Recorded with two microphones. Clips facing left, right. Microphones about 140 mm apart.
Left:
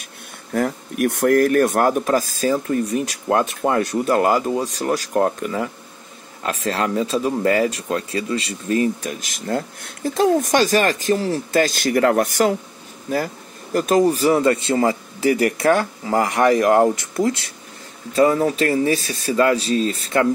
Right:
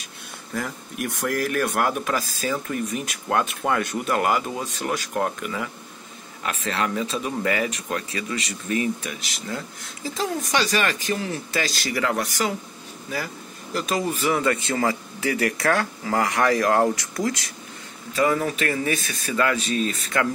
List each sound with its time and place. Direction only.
0.5 s speech: 55° left (ahead or behind); by 20.2 s 30° left (ahead or behind)